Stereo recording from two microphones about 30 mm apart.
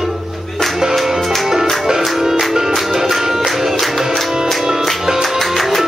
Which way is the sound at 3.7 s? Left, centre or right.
Centre.